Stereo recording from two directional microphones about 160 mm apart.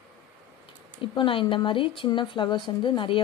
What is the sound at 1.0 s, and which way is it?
Speech, 30° left (ahead or behind).